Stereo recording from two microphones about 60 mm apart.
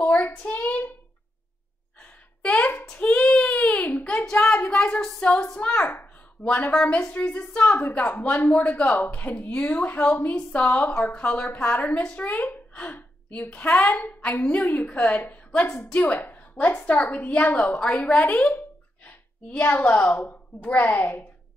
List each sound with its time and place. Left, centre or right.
0.1 s a child's voice: left
2.5 s a sound: left
2.9 s child singing: left
3.9 s a child's voice: centre